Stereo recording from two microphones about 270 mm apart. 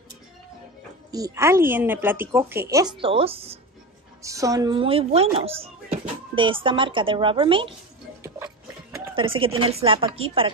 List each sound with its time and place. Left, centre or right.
1.1 s speech: centre
9.1 s speech: centre